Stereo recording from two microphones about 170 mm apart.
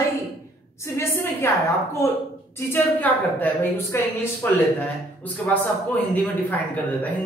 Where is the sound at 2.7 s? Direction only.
10° left (ahead or behind).